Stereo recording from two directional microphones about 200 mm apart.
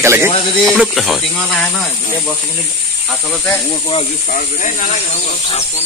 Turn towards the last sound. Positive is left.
turn(degrees=35)  # may be behind; listen again after turning